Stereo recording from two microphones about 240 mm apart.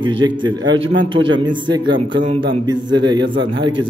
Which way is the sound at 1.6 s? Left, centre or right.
Centre.